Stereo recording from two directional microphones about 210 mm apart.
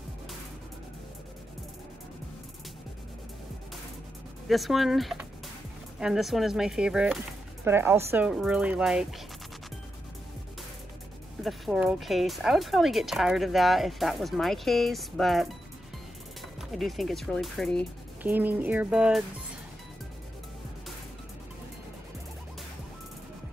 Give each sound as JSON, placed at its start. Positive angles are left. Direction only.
{"t": 4.5, "sound": "speech", "side_deg": 0}
{"t": 11.4, "sound": "speech", "side_deg": 0}
{"t": 16.7, "sound": "speech", "side_deg": 0}